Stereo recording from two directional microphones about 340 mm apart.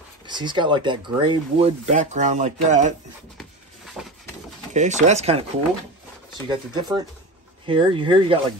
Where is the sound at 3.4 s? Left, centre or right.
Centre.